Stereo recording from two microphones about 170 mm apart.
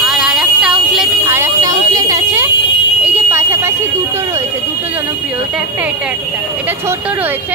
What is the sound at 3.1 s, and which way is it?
Alarm, 15° right (ahead or behind).